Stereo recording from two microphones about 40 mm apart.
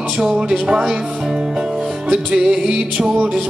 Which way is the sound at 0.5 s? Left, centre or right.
Right.